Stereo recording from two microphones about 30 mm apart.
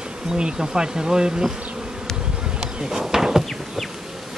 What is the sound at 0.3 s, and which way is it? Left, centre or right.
Speech, right.